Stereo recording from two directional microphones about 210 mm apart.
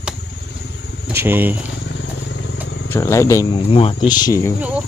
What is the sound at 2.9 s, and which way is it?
Speech, 15° left (ahead or behind).